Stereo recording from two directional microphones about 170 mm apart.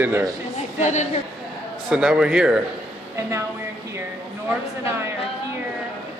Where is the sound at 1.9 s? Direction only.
5° right (ahead or behind).